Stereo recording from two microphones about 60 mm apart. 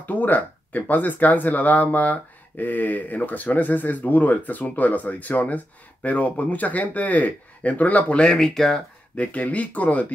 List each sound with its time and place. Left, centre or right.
0.0 s speech: left; by 8.8 s centre
9.1 s speech: left